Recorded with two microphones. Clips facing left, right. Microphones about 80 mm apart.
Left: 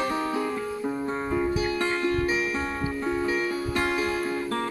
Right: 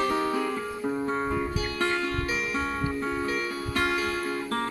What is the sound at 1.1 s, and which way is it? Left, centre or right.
Music, centre.